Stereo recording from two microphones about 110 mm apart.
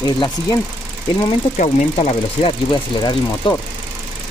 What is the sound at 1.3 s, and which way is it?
Speech, 70° left (ahead or behind).